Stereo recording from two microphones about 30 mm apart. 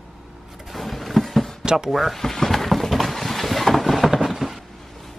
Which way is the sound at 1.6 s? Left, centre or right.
Right.